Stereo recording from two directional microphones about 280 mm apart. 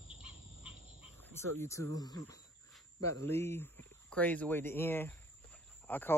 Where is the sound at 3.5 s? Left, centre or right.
Centre.